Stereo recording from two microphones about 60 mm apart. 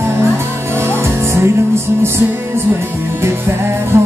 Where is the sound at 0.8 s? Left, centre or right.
Right.